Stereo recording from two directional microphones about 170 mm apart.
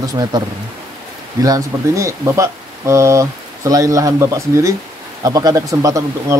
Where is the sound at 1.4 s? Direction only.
20° right (ahead or behind).